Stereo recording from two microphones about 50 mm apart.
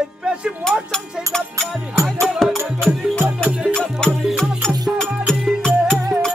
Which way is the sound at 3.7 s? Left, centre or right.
Centre.